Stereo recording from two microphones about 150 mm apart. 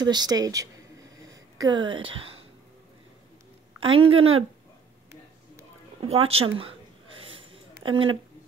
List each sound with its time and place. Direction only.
0.0 s a woman's voice: 30° right (ahead or behind)
3.8 s speech: 40° right (ahead or behind)
5.9 s speech: 40° right (ahead or behind)
7.2 s a sound: 35° right (ahead or behind)